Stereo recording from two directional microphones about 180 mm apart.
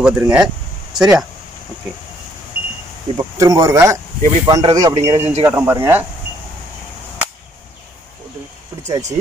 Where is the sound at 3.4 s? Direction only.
20° right (ahead or behind).